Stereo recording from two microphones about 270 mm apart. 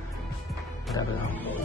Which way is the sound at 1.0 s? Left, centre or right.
Centre.